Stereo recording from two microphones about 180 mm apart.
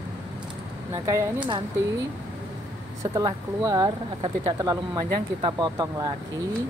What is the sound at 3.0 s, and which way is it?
Speech, 20° right (ahead or behind).